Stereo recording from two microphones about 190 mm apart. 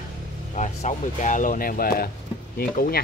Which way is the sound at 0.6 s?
40° left (ahead or behind).